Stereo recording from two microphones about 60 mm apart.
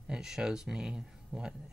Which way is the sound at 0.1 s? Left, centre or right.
Centre.